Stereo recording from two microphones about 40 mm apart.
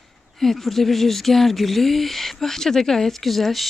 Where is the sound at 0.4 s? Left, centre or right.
Centre.